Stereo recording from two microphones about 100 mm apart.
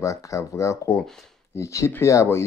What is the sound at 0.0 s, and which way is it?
Speech, 30° left (ahead or behind).